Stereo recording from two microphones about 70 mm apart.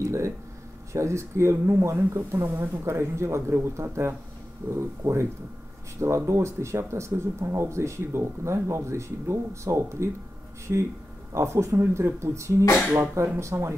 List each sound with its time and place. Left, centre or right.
0.0 s a sound: right
0.9 s speech: right
11.3 s speech: right